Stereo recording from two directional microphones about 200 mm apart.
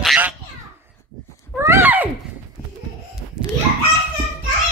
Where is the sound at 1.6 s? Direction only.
10° right (ahead or behind).